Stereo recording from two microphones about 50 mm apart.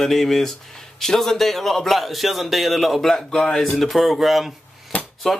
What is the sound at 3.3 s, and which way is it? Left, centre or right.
Speech, centre.